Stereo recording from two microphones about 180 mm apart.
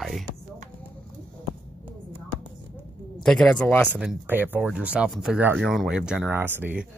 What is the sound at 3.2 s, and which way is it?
Speech, 5° left (ahead or behind).